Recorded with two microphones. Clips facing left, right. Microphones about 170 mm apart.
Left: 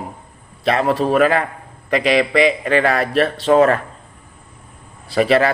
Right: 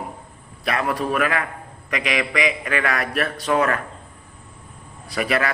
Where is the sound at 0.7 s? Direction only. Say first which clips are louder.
Left 6 dB; 30° left (ahead or behind).